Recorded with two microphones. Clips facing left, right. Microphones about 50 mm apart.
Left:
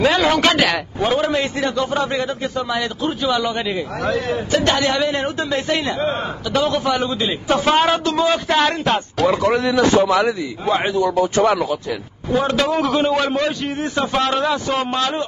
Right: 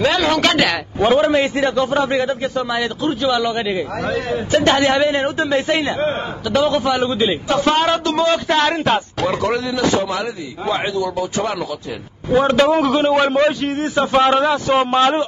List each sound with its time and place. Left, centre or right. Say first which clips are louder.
0.0 s a man's voice: left 1 dB; centre
1.0 s a man's voice: right 5 dB; centre
4.5 s a man's voice: right 4 dB; right
7.5 s a man's voice: left 2 dB; centre
9.2 s a man's voice: left 2 dB; centre
9.6 s a man's voice: left 3 dB; left
10.7 s speech: left 2 dB; left
12.3 s a man's voice: right 4 dB; centre
14.1 s a man's voice: right 6 dB; right
14.4 s a man's voice: right 3 dB; centre
14.8 s a man's voice: right 6 dB; right